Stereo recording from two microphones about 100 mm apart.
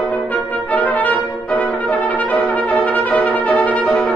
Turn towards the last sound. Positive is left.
turn(degrees=0)  # may be behind; listen again after turning